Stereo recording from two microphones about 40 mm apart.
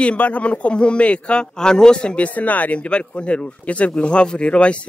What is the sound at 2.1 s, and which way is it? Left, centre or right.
Speech, left.